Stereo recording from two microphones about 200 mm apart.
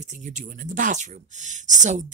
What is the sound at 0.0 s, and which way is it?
Speech, 40° right (ahead or behind).